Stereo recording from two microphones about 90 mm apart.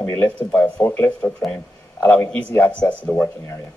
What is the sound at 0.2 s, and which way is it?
Speech, 15° left (ahead or behind).